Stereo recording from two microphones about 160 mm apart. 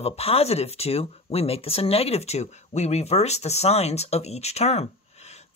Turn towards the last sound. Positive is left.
turn(degrees=40)  # may be behind; listen again after turning